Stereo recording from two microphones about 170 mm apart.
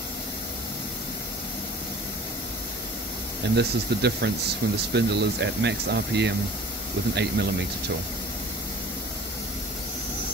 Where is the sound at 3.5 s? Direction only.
75° right (ahead or behind).